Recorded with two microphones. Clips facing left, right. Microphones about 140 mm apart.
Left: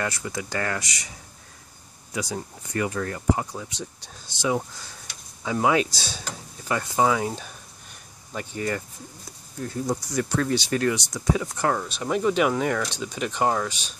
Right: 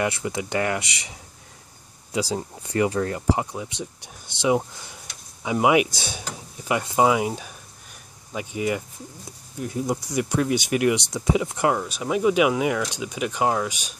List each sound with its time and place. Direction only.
0.0 s speech: 20° right (ahead or behind)
2.1 s speech: 30° right (ahead or behind); by 13.9 s 10° right (ahead or behind)